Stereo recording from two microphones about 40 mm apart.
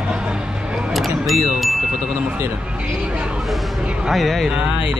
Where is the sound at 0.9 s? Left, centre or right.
Centre.